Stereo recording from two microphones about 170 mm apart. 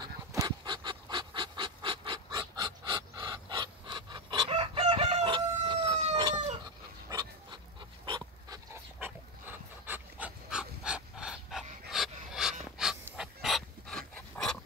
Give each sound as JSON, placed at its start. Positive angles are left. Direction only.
{"t": 0.0, "sound": "pant", "side_deg": -20}
{"t": 7.1, "sound": "dog", "side_deg": -25}
{"t": 9.0, "sound": "dog", "side_deg": -10}